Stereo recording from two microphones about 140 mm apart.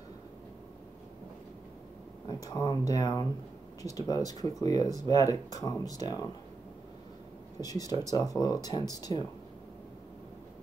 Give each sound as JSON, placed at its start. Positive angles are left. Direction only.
{"t": 2.2, "sound": "speech", "side_deg": 30}
{"t": 7.6, "sound": "speech", "side_deg": 25}